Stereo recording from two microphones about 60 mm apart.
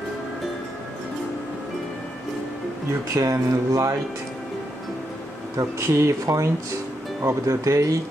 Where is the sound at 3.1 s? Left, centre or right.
Right.